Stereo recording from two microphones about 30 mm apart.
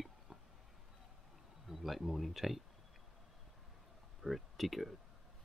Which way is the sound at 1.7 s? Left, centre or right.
Centre.